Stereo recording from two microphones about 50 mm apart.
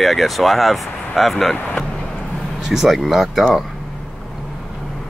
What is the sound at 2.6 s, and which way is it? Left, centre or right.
Speech, centre.